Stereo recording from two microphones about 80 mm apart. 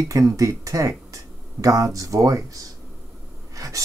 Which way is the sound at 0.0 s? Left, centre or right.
Right.